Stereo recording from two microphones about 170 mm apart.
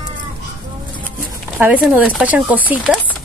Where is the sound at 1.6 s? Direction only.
10° right (ahead or behind).